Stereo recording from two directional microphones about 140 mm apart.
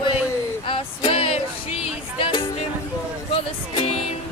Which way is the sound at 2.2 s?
40° left (ahead or behind).